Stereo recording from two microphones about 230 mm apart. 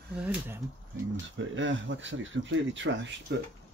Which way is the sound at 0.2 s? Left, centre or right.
Centre.